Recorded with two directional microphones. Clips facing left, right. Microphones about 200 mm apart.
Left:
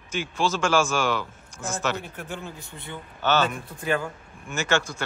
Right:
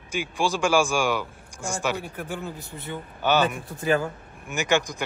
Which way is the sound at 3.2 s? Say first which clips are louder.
Right 1 dB; 15° right (ahead or behind).